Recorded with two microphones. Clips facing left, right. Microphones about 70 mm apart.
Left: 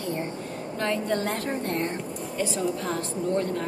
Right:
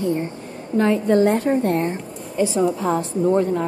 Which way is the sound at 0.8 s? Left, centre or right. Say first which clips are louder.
Right 10 dB; centre.